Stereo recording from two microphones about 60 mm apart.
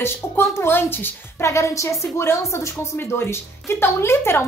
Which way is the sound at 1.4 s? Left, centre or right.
Left.